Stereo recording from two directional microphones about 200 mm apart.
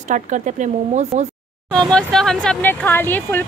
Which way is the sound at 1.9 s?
5° left (ahead or behind).